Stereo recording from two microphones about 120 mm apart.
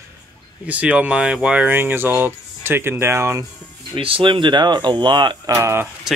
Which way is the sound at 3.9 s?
45° right (ahead or behind).